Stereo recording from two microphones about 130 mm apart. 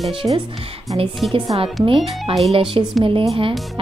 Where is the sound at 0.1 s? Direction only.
40° right (ahead or behind).